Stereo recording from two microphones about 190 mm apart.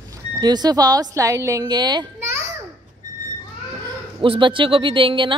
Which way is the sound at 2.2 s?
15° right (ahead or behind).